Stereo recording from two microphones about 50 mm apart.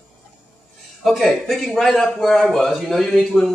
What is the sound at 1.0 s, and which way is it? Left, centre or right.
A man's voice, centre.